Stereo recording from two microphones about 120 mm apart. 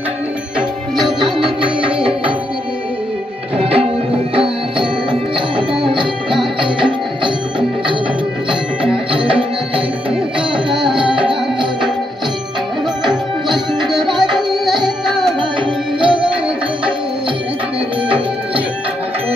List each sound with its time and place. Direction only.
1.2 s music: 45° right (ahead or behind)
3.5 s music: 55° right (ahead or behind)
5.6 s music: 45° right (ahead or behind)
9.3 s music: 50° right (ahead or behind)
13.8 s tabla: centre (ahead or behind)
14.3 s music: centre (ahead or behind)
16.0 s music: 45° right (ahead or behind)